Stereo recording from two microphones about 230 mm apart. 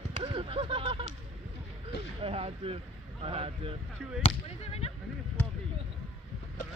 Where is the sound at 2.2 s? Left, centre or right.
Right.